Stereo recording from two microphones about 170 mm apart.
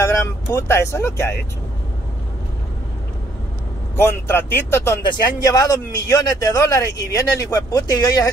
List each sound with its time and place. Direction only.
0.0 s speech: 15° left (ahead or behind)
3.9 s a man's voice: 15° left (ahead or behind)